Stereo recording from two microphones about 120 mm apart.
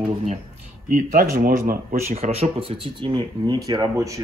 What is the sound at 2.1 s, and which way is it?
Speech, 65° right (ahead or behind).